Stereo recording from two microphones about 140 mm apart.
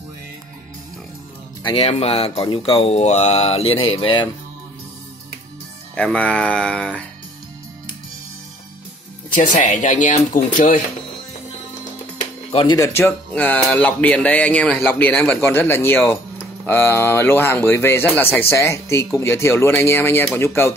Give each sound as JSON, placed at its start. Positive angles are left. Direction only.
{"t": 1.6, "sound": "speech", "side_deg": 40}
{"t": 5.9, "sound": "speech", "side_deg": 10}
{"t": 9.3, "sound": "speech", "side_deg": 65}
{"t": 12.4, "sound": "music", "side_deg": 40}
{"t": 12.7, "sound": "speech", "side_deg": 25}
{"t": 13.0, "sound": "speech", "side_deg": 10}